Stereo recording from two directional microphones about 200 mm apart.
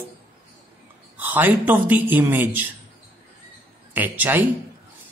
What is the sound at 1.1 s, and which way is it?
Speech, 10° right (ahead or behind).